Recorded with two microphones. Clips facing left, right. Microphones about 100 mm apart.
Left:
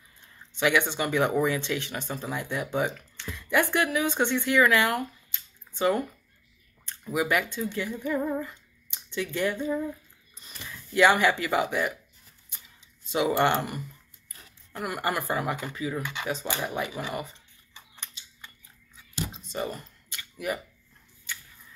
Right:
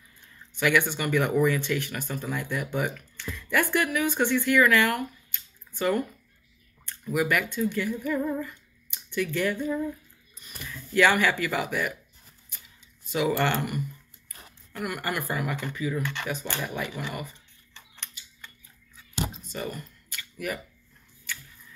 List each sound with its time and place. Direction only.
0.6 s speech: 20° left (ahead or behind)
13.1 s speech: 25° left (ahead or behind)
16.0 s speech: 5° left (ahead or behind)
17.1 s speech: 30° left (ahead or behind)
17.7 s a sound: 10° left (ahead or behind)
19.5 s a sound: 30° left (ahead or behind)
20.3 s speech: 20° left (ahead or behind)